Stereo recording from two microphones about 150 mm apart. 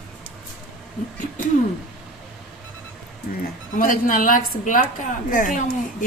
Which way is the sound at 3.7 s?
65° left (ahead or behind).